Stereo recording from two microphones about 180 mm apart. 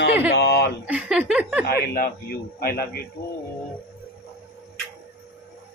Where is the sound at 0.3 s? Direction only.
70° left (ahead or behind).